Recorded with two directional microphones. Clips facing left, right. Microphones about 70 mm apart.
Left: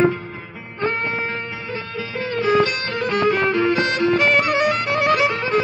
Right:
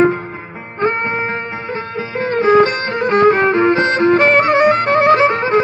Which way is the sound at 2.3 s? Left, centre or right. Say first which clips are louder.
Right 7 dB; right.